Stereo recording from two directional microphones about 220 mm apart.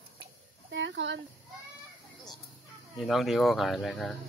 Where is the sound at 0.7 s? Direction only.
55° right (ahead or behind).